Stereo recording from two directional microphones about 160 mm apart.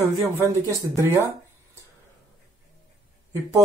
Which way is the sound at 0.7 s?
20° right (ahead or behind).